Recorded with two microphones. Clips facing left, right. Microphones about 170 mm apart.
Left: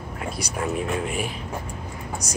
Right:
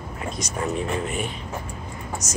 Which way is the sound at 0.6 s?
Centre (ahead or behind).